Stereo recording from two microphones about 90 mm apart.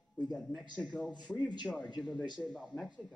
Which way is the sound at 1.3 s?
5° left (ahead or behind).